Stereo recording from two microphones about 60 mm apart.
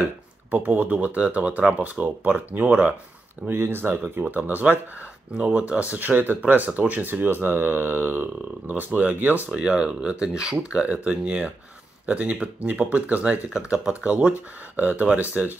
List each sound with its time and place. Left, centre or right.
0.5 s speech: right
3.4 s speech: right
5.3 s speech: centre
9.5 s speech: centre